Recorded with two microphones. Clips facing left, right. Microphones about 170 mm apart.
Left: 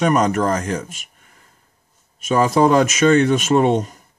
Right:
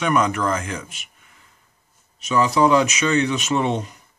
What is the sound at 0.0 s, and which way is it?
A man's voice, 40° left (ahead or behind).